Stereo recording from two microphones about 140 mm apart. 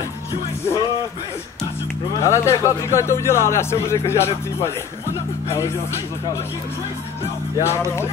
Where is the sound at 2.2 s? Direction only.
20° left (ahead or behind).